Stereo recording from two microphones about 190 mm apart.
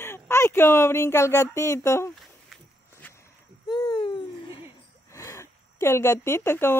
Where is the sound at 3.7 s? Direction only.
25° left (ahead or behind).